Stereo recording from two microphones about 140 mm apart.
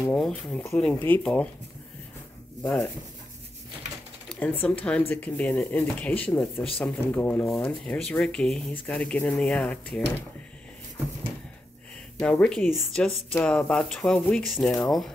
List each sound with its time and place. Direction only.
0.1 s speech: 5° left (ahead or behind)
2.6 s speech: 10° left (ahead or behind)
4.3 s speech: 10° left (ahead or behind)
12.2 s speech: 5° left (ahead or behind)